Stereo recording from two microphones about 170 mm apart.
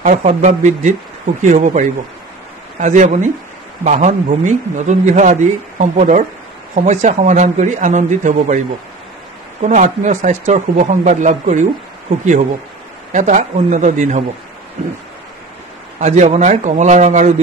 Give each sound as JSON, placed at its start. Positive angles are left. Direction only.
{"t": 0.0, "sound": "speech", "side_deg": -45}
{"t": 13.1, "sound": "speech", "side_deg": -45}
{"t": 16.0, "sound": "speech", "side_deg": -45}